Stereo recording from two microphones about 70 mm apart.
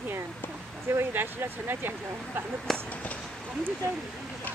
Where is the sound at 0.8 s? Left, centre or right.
Right.